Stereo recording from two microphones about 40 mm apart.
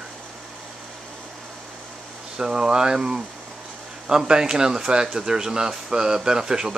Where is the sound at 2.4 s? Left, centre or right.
Centre.